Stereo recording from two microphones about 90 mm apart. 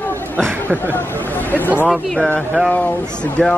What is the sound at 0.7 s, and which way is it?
Speech, 25° right (ahead or behind).